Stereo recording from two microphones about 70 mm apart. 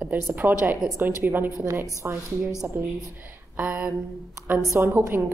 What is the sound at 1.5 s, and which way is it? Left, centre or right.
Speech, right.